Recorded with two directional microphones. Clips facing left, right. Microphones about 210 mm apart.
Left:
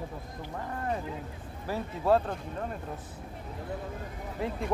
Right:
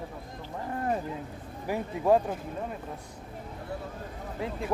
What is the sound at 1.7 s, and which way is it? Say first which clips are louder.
Speech: right 2 dB; 15° right (ahead or behind).